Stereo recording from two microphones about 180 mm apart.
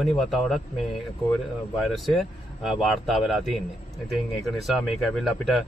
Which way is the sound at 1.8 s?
Centre (ahead or behind).